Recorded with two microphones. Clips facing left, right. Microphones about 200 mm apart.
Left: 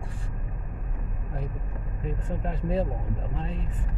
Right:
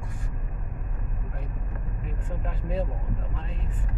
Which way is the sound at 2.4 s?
35° left (ahead or behind).